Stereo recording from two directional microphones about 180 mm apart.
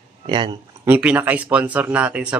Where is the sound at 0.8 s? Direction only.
10° right (ahead or behind).